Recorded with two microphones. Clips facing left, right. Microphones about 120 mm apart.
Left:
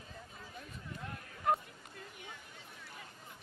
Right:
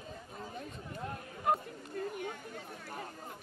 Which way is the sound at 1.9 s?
50° right (ahead or behind).